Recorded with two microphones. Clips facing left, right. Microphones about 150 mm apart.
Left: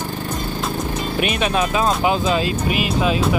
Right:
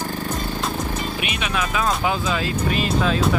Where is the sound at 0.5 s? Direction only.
Centre (ahead or behind).